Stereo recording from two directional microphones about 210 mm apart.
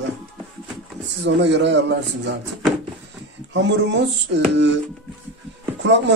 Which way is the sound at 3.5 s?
60° right (ahead or behind).